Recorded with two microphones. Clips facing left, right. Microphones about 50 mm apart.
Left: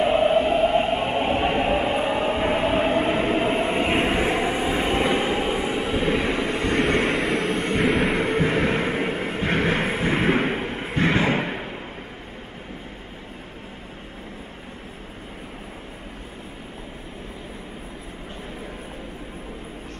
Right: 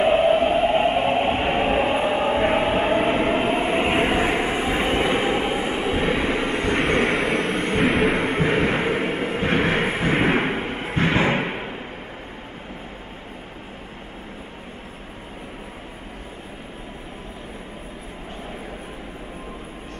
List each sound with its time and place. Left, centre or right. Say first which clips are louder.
0.0 s a sound: right 2 dB; centre
1.8 s train: right 2 dB; centre
3.5 s vehicle: right 1 dB; centre
6.4 s vehicle: right 1 dB; right
6.7 s vehicle: right 1 dB; centre
8.4 s a sound: right 1 dB; right